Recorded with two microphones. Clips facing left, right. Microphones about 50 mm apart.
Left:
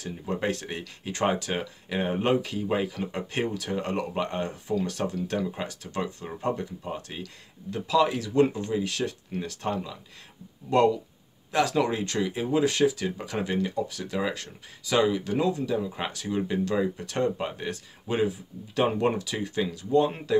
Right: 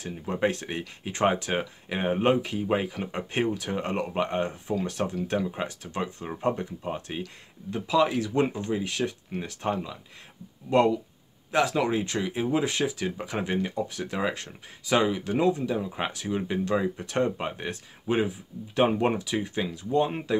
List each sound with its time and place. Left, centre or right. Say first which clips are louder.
0.1 s speech: right 2 dB; centre